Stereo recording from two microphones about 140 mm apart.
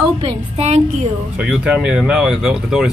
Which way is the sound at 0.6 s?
50° right (ahead or behind).